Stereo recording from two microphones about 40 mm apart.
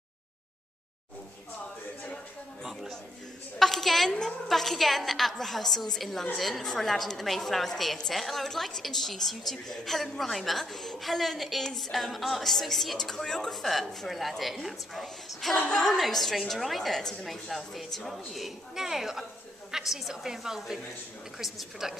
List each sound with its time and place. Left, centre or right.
3.5 s a woman's voice: centre
15.5 s a woman's voice: centre